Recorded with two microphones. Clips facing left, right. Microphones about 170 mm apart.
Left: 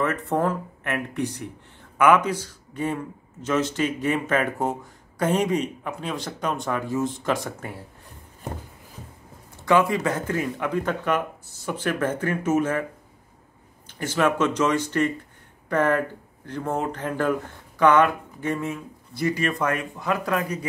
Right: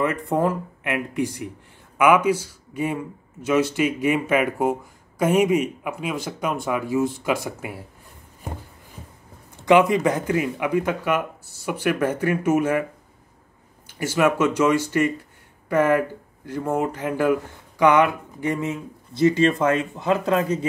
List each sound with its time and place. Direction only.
0.0 s speech: 10° right (ahead or behind)
9.7 s speech: 20° right (ahead or behind)
13.9 s speech: 10° right (ahead or behind); by 20.6 s 25° right (ahead or behind)